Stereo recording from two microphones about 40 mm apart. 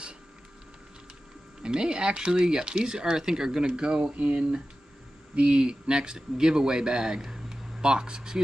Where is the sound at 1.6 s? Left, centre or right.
Right.